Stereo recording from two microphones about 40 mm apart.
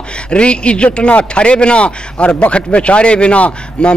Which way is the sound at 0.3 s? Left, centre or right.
Left.